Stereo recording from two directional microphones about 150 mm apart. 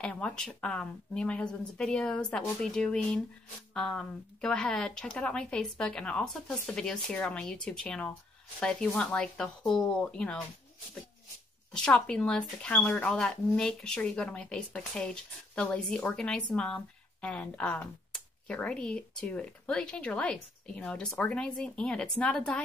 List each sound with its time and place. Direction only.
0.0 s speech: 5° left (ahead or behind)
11.7 s speech: 5° left (ahead or behind)